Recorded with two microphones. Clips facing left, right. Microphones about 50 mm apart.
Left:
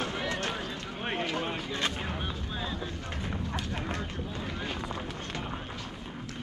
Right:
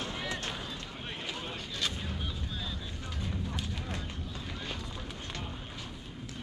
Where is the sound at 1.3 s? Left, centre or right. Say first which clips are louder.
Left 7 dB; left.